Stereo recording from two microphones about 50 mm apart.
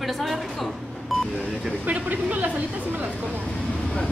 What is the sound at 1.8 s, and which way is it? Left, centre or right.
Speech, right.